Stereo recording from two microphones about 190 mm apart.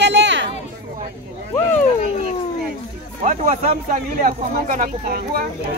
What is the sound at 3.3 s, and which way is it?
Speech, 40° right (ahead or behind).